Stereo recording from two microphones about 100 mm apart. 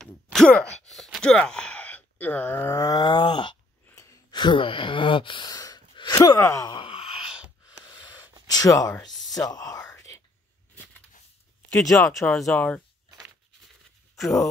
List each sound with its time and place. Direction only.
0.0 s groan: 5° left (ahead or behind); by 3.0 s 30° left (ahead or behind)
3.0 s groan: 55° left (ahead or behind)
3.9 s sigh: 30° left (ahead or behind)
4.3 s speech: 50° left (ahead or behind)
5.5 s sneeze: 40° left (ahead or behind)
5.9 s speech: 45° left (ahead or behind)
6.7 s wail: 65° left (ahead or behind)
7.6 s gasp: 45° left (ahead or behind)
8.5 s whispering: 40° left (ahead or behind)
11.7 s speech: 5° left (ahead or behind)
12.2 s speech: 20° left (ahead or behind)
14.2 s speech: centre (ahead or behind)